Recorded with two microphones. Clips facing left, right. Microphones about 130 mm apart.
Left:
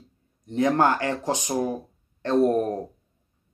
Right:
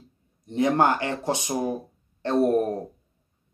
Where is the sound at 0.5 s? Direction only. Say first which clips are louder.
Even; 20° right (ahead or behind).